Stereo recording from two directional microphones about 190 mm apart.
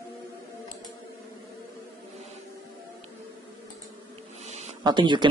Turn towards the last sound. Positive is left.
turn(degrees=-25)  # may be behind; listen again after turning